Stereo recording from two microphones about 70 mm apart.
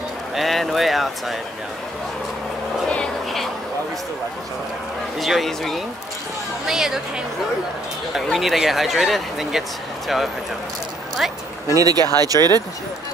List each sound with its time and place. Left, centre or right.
0.4 s speech: centre
5.2 s a woman's voice: centre
8.1 s speech: centre
11.7 s speech: right